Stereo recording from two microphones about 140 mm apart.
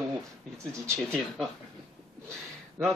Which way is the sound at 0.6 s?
20° right (ahead or behind).